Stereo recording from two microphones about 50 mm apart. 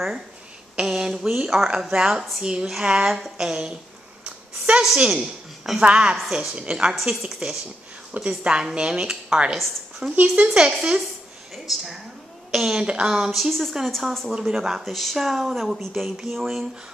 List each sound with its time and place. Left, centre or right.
0.7 s speech: centre
4.2 s a sound: centre
4.9 s speech: centre
10.1 s speech: right
11.5 s a woman's voice: centre
13.3 s speech: centre
14.4 s speech: centre
14.9 s speech: centre